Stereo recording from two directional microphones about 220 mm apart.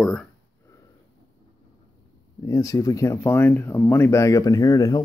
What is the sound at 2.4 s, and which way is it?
Speech, 15° left (ahead or behind).